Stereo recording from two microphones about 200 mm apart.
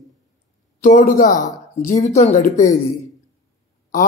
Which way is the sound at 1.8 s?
35° left (ahead or behind).